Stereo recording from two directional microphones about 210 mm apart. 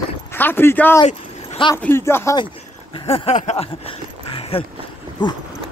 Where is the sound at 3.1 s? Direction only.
30° left (ahead or behind).